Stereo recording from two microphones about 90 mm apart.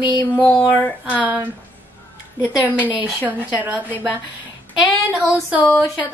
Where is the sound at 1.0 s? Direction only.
15° right (ahead or behind).